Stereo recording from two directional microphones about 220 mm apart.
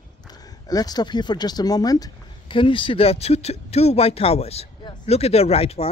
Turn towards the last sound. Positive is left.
turn(degrees=25)  # may be behind; listen again after turning